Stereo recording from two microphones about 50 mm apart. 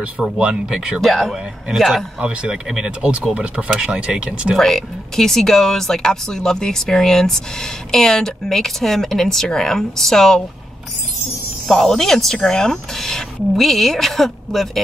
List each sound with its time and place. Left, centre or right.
0.0 s speech: centre
1.0 s speech: centre
2.1 s speech: centre
4.6 s speech: centre
11.6 s speech: centre